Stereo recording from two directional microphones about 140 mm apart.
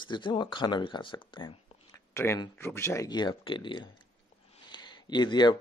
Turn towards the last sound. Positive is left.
turn(degrees=30)  # may be behind; listen again after turning